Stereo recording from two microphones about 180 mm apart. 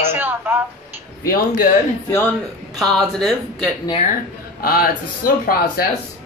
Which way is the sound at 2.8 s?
Centre (ahead or behind).